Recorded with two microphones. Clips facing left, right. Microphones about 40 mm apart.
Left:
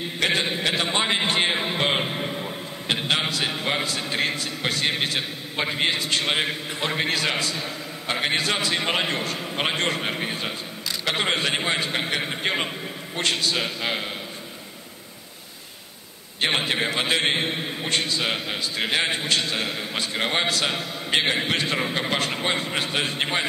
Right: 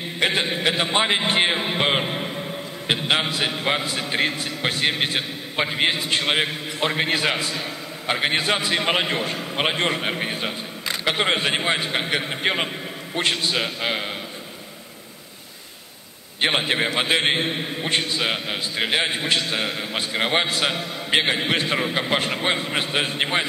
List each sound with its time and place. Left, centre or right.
0.2 s a man's voice: centre
16.3 s a man's voice: centre